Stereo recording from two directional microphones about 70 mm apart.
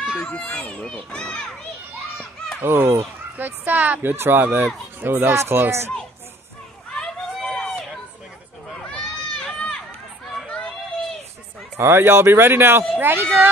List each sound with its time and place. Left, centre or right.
0.2 s a child's voice: centre
2.6 s speech: right
3.3 s speech: right
7.3 s run: centre
8.8 s run: centre
11.8 s speech: right